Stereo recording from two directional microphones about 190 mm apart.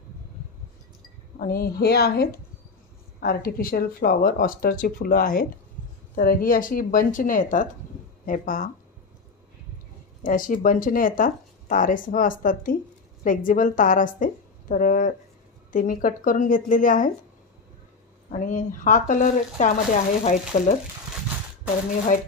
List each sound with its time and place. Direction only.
1.4 s a woman's voice: 50° left (ahead or behind)
10.2 s speech: 45° left (ahead or behind)
18.3 s speech: 40° left (ahead or behind)